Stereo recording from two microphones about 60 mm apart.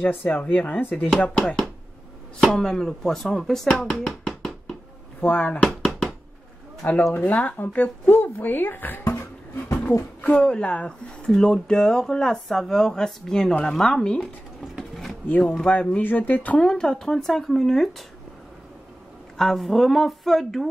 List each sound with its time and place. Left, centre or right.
0.0 s speech: left
2.4 s speech: centre
3.9 s a sound: centre
5.2 s speech: left
5.6 s a sound: centre
6.8 s speech: left
10.2 s speech: centre
14.8 s a sound: centre
15.2 s speech: left
16.0 s speech: left
16.5 s speech: centre
19.3 s speech: centre